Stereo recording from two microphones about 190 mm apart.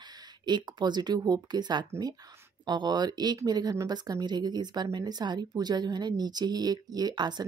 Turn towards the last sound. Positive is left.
turn(degrees=-20)  # may be behind; listen again after turning